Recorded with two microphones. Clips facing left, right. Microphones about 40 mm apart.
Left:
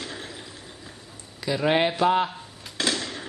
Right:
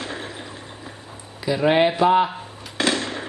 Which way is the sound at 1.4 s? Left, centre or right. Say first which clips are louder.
Right 4 dB; centre.